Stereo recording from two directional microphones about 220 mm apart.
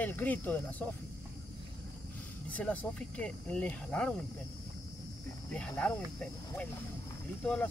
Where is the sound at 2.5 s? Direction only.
5° left (ahead or behind).